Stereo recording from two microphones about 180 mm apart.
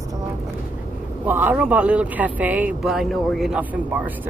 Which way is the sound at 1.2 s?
10° right (ahead or behind).